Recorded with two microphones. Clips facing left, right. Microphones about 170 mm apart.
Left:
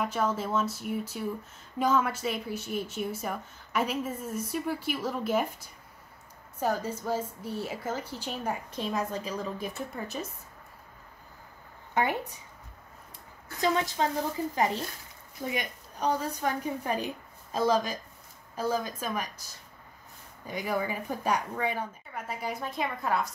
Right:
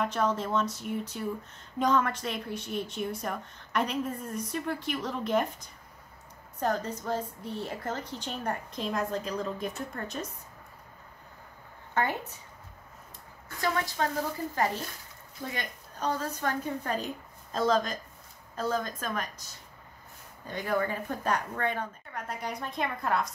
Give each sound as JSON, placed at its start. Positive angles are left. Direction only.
{"t": 0.0, "sound": "speech", "side_deg": 5}
{"t": 11.9, "sound": "speech", "side_deg": 15}
{"t": 13.6, "sound": "a woman's voice", "side_deg": 20}
{"t": 15.4, "sound": "a woman's voice", "side_deg": 15}
{"t": 20.4, "sound": "speech", "side_deg": 10}